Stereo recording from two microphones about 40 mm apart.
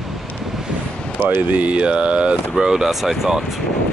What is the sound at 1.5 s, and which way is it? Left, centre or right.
Speech, right.